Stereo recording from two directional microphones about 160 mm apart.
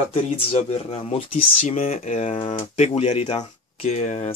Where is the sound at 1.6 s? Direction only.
50° left (ahead or behind).